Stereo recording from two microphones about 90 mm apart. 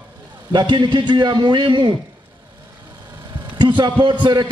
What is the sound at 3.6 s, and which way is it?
Speech, 55° right (ahead or behind).